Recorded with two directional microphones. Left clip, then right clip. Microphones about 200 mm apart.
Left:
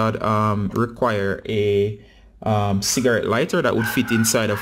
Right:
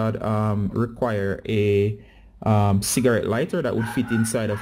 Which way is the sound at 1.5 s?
20° right (ahead or behind).